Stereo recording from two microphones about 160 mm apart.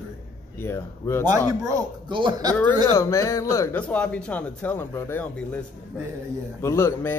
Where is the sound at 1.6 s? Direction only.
25° right (ahead or behind).